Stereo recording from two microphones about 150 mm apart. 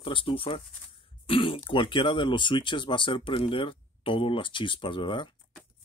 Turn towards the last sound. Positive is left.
turn(degrees=35)  # may be behind; listen again after turning